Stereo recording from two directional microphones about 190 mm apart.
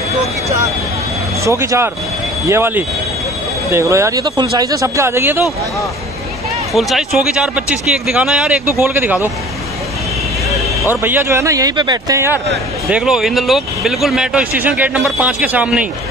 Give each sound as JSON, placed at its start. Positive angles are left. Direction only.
{"t": 1.4, "sound": "speech", "side_deg": -15}
{"t": 6.7, "sound": "speech", "side_deg": 0}
{"t": 10.9, "sound": "speech", "side_deg": -10}
{"t": 12.9, "sound": "speech", "side_deg": -5}